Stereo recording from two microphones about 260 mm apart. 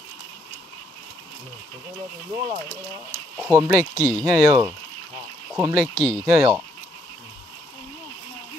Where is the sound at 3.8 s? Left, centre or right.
Centre.